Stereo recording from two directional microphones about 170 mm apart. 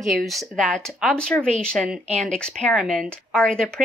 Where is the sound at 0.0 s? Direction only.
Centre (ahead or behind).